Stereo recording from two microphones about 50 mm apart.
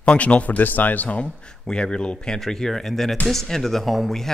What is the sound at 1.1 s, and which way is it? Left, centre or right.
Speech, centre.